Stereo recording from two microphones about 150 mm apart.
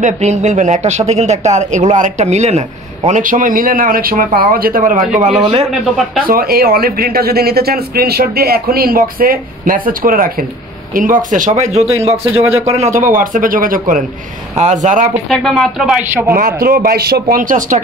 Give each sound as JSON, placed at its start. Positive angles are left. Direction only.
{"t": 0.0, "sound": "speech", "side_deg": -50}
{"t": 3.1, "sound": "speech", "side_deg": -60}
{"t": 5.4, "sound": "a man's voice", "side_deg": -40}
{"t": 6.2, "sound": "speech", "side_deg": -80}
{"t": 14.6, "sound": "speech", "side_deg": -55}
{"t": 15.2, "sound": "speech", "side_deg": 0}
{"t": 16.3, "sound": "speech", "side_deg": -80}